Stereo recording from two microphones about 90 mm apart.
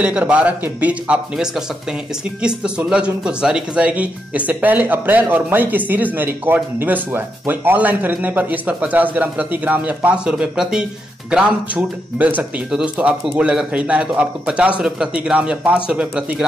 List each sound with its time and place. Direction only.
0.0 s speech: 15° right (ahead or behind)